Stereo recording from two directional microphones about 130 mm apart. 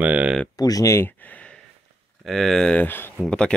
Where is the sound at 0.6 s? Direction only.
25° left (ahead or behind); by 1.6 s 10° left (ahead or behind).